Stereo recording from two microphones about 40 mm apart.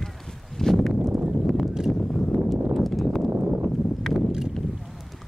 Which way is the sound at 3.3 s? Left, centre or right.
Right.